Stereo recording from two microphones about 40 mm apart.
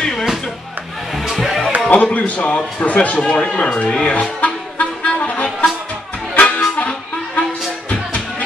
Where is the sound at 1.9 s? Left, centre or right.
Left.